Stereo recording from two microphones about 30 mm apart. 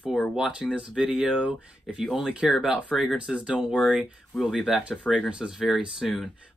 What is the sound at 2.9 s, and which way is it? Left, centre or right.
Speech, centre.